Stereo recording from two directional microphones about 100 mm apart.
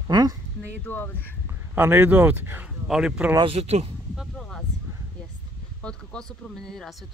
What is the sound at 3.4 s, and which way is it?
Speech, 90° right.